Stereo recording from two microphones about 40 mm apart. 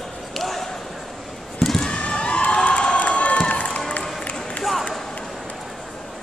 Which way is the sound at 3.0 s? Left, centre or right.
Left.